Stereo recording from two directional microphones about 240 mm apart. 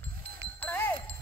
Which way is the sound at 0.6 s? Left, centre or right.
Centre.